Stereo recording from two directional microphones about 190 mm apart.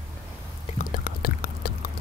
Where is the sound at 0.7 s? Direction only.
45° left (ahead or behind).